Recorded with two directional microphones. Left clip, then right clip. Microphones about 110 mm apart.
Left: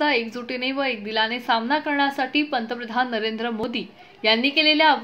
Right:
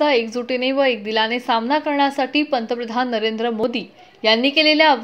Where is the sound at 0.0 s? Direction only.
25° right (ahead or behind).